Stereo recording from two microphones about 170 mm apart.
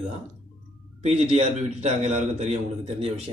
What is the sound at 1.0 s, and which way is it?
A man's voice, 40° right (ahead or behind).